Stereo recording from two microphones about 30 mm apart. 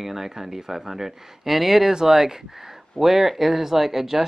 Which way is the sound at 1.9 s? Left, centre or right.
Centre.